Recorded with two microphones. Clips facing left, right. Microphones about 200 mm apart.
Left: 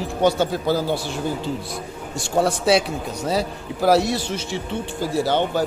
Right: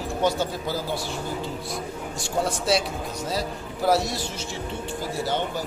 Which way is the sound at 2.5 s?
65° left (ahead or behind).